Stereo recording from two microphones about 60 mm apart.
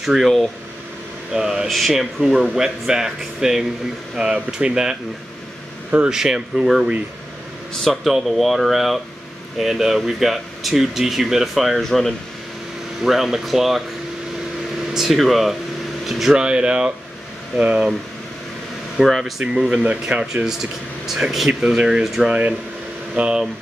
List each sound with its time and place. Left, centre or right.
0.0 s speech: centre
6.0 s speech: centre
15.0 s speech: centre
16.3 s speech: centre
19.0 s speech: centre
19.4 s speech: centre
21.1 s speech: centre
22.0 s speech: centre
23.1 s speech: centre